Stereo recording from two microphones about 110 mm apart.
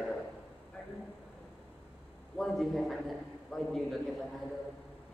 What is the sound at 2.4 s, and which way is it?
A man's voice, centre (ahead or behind).